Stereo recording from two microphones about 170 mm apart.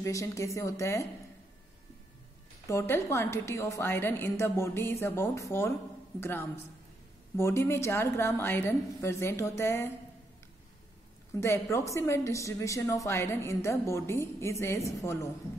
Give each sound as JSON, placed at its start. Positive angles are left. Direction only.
{"t": 0.0, "sound": "a woman's voice", "side_deg": 20}
{"t": 2.7, "sound": "a woman's voice", "side_deg": 15}
{"t": 11.3, "sound": "a woman's voice", "side_deg": 15}